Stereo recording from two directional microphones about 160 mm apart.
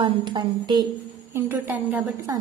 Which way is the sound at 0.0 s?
30° right (ahead or behind).